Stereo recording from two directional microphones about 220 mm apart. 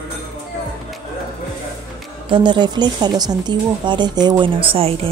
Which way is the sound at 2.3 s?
20° right (ahead or behind).